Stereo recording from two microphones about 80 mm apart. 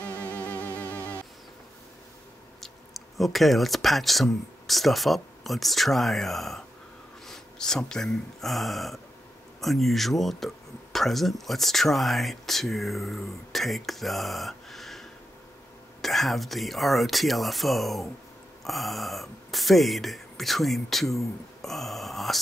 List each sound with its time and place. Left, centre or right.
0.2 s music: centre
2.6 s speech: centre